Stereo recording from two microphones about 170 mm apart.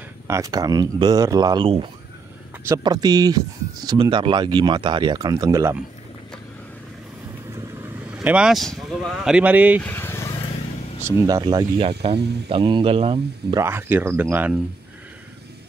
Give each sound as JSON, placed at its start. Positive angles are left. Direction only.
{"t": 0.3, "sound": "speech", "side_deg": -20}
{"t": 7.5, "sound": "speech", "side_deg": -10}
{"t": 9.8, "sound": "vehicle", "side_deg": 10}
{"t": 11.1, "sound": "speech", "side_deg": -20}
{"t": 11.9, "sound": "speech", "side_deg": -35}
{"t": 13.6, "sound": "speech", "side_deg": -15}